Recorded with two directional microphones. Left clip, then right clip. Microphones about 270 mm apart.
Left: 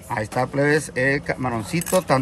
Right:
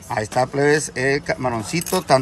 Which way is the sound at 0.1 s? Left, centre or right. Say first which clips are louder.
Right 3 dB; centre.